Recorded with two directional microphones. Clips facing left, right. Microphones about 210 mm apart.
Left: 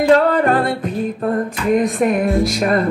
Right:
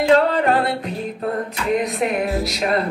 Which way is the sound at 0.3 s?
50° left (ahead or behind).